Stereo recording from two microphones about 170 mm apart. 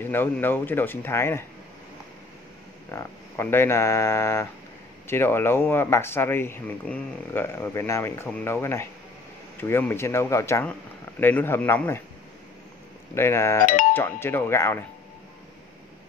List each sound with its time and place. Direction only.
0.0 s speech: 10° left (ahead or behind)
2.9 s speech: 15° left (ahead or behind)
13.1 s speech: 15° left (ahead or behind)